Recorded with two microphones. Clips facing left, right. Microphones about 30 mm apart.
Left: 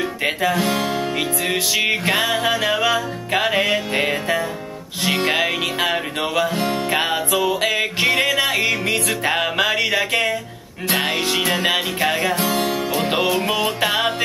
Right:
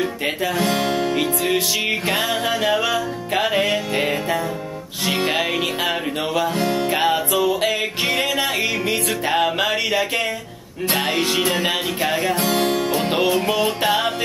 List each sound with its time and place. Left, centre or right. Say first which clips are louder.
0.7 s music: right 1 dB; right
1.8 s music: left 2 dB; centre
3.3 s music: left 1 dB; centre
6.5 s music: right 1 dB; left
7.1 s music: right 1 dB; centre
9.3 s music: right 1 dB; centre
11.6 s music: left 2 dB; centre
13.6 s music: even; left